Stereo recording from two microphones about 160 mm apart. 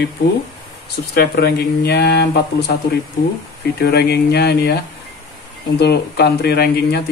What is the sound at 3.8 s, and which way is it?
Speech, 90° left.